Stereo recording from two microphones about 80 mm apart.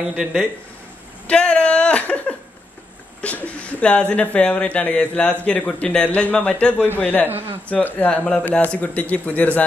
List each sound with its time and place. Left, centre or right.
0.1 s a man's voice: centre
1.2 s a man's voice: centre